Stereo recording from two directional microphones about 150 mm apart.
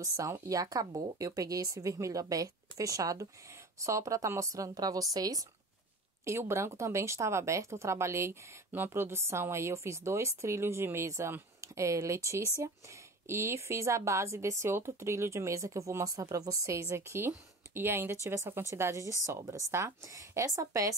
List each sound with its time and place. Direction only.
0.0 s speech: 20° right (ahead or behind)